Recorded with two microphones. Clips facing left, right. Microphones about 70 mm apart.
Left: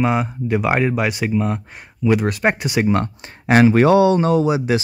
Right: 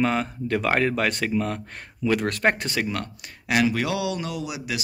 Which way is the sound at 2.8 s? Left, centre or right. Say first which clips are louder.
Left 11 dB; left.